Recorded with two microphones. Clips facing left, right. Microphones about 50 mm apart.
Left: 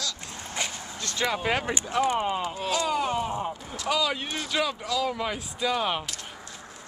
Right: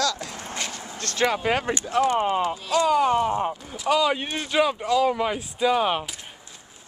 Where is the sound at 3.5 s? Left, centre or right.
Centre.